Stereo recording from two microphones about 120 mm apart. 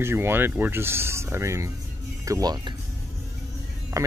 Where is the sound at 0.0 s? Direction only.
20° right (ahead or behind).